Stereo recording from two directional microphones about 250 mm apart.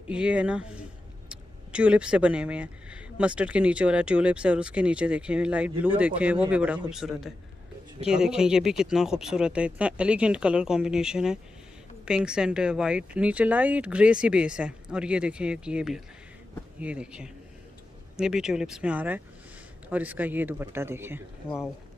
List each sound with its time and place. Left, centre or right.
0.1 s speech: centre
21.4 s speech: centre